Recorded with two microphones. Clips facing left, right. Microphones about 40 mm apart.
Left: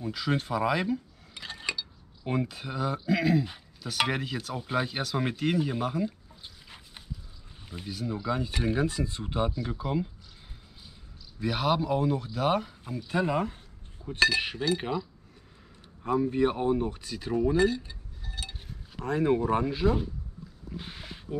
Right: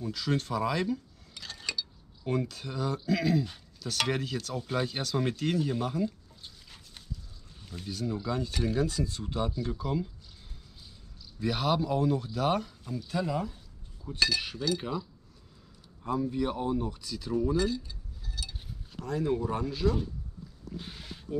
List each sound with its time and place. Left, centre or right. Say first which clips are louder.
0.0 s speech: left 1 dB; centre
11.3 s speech: left 1 dB; centre; by 13.6 s left
14.0 s speech: left 5 dB; left
16.1 s speech: left 5 dB; left
20.7 s a sound: left 2 dB; centre